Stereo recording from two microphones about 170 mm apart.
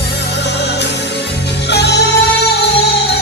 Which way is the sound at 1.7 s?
80° left.